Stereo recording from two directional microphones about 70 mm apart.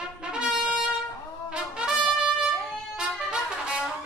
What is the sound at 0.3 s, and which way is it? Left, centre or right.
Trumpet, centre.